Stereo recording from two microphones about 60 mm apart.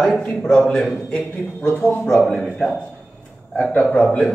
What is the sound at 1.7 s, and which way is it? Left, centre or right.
Speech, left.